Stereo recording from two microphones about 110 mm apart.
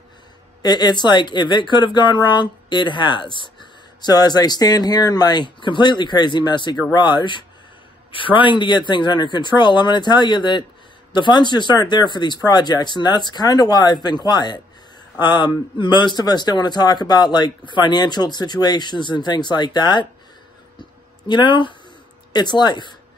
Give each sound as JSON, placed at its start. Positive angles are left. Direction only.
{"t": 0.6, "sound": "speech", "side_deg": 40}
{"t": 21.3, "sound": "speech", "side_deg": 45}